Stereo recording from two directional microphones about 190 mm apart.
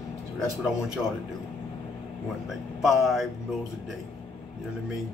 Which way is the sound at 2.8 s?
Centre (ahead or behind).